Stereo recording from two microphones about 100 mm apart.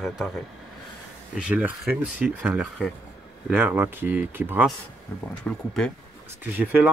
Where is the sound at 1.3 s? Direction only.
10° right (ahead or behind).